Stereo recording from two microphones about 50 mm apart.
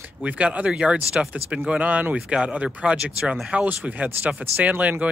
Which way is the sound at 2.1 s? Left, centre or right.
Right.